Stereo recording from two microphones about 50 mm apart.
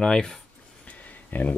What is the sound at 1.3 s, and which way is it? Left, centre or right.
Speech, left.